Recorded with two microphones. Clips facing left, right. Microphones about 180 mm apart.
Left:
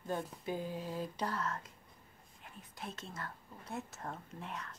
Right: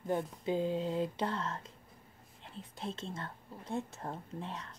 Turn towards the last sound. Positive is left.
turn(degrees=-30)  # may be behind; listen again after turning